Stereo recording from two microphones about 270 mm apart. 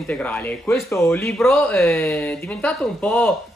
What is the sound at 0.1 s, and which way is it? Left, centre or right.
Speech, centre.